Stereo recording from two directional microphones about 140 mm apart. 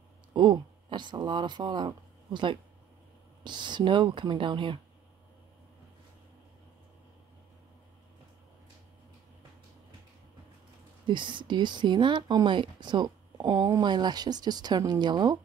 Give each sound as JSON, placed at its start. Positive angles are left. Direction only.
{"t": 0.3, "sound": "speech", "side_deg": -35}
{"t": 11.1, "sound": "speech", "side_deg": -35}